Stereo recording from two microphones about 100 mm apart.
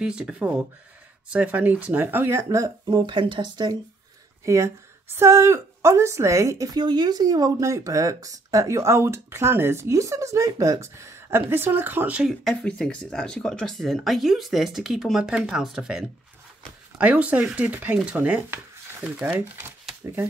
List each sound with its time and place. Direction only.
0.0 s speech: 10° right (ahead or behind); by 2.7 s 30° right (ahead or behind)
2.9 s speech: 50° right (ahead or behind)
4.5 s a woman's voice: 25° right (ahead or behind)
12.6 s speech: 10° left (ahead or behind); by 19.3 s 10° right (ahead or behind)